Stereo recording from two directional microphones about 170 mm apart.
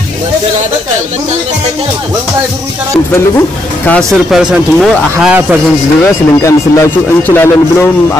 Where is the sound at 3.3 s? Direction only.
10° left (ahead or behind).